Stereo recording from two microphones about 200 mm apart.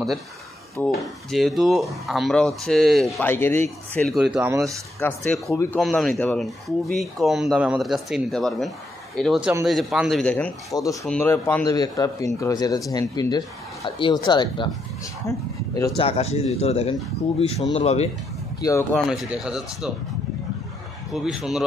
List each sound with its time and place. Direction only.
0.7 s speech: centre (ahead or behind)
4.6 s speech: centre (ahead or behind)
5.5 s speech: 15° left (ahead or behind)
5.8 s speech: centre (ahead or behind)
16.0 s speech: 30° left (ahead or behind)
18.6 s speech: 15° left (ahead or behind)
19.0 s speech: 5° right (ahead or behind)
21.1 s speech: centre (ahead or behind)